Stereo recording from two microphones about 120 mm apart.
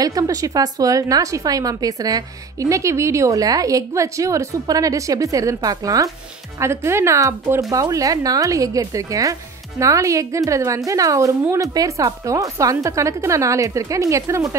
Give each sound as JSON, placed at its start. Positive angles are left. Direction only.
{"t": 0.0, "sound": "a woman's voice", "side_deg": -30}